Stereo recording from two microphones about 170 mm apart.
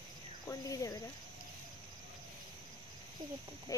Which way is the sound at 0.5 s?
20° left (ahead or behind).